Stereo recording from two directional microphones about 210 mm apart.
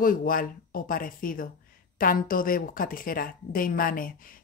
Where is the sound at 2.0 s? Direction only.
40° left (ahead or behind).